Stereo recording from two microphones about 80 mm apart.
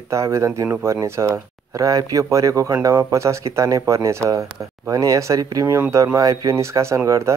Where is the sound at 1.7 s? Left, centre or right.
Right.